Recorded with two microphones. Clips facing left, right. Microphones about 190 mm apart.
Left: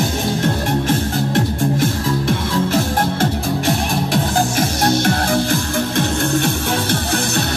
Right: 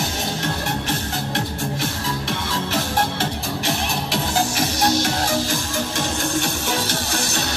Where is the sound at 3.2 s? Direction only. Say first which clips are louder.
Left 7 dB; 50° left (ahead or behind).